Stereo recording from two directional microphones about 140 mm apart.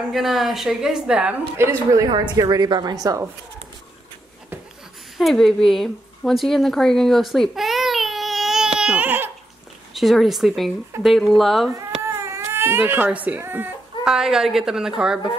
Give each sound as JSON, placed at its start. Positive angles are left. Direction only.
{"t": 0.1, "sound": "a woman's voice", "side_deg": 0}
{"t": 1.6, "sound": "a woman's voice", "side_deg": -20}
{"t": 5.1, "sound": "a sound", "side_deg": 0}
{"t": 9.9, "sound": "a woman's voice", "side_deg": 0}
{"t": 11.7, "sound": "baby cry", "side_deg": -20}
{"t": 14.0, "sound": "a woman's voice", "side_deg": -5}